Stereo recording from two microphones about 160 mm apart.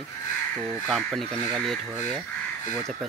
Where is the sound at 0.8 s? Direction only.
Centre (ahead or behind).